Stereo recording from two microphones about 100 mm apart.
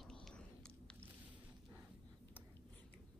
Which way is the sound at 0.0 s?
5° left (ahead or behind).